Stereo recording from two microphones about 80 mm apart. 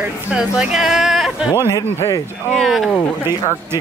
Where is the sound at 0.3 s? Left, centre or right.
Centre.